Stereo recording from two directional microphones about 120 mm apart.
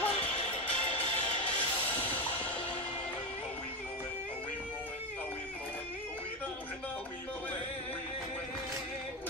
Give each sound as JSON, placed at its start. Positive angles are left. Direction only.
{"t": 0.0, "sound": "music", "side_deg": 60}